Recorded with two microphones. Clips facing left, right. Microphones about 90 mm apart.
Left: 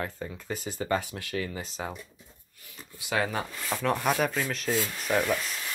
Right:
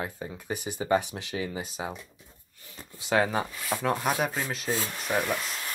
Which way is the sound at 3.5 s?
15° right (ahead or behind).